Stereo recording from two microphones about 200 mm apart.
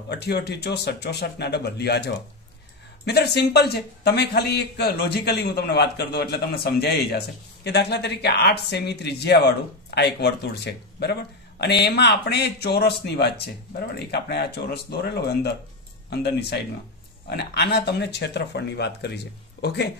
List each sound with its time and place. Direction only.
0.1 s a man's voice: 55° left (ahead or behind)